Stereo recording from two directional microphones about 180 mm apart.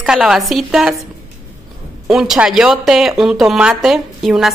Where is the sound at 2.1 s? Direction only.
Centre (ahead or behind).